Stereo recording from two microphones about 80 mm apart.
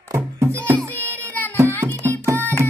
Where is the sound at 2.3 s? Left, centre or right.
Left.